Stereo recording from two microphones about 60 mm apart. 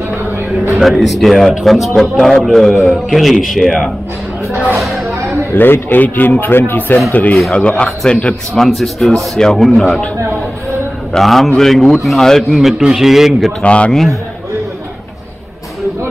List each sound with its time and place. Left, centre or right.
0.8 s a man's voice: centre
4.7 s a sound: centre
5.5 s a man's voice: left
7.5 s speech: centre
8.5 s a man's voice: centre
11.1 s a man's voice: centre
12.4 s a man's voice: centre
13.6 s speech: centre